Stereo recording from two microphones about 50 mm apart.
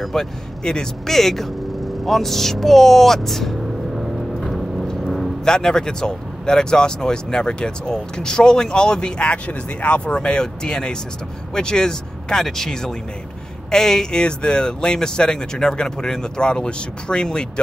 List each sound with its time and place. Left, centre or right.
0.0 s speech: centre
2.0 s vehicle: centre
4.8 s speech: centre